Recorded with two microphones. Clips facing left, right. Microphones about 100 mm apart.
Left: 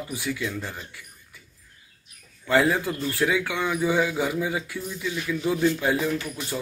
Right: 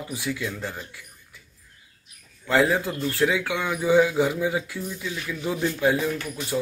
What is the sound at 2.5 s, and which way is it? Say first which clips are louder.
Speech: even; 15° right (ahead or behind).